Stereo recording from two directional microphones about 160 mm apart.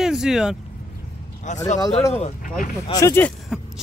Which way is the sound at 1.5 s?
50° left (ahead or behind).